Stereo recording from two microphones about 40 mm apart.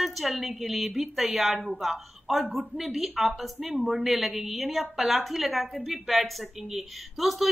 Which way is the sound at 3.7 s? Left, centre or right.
Right.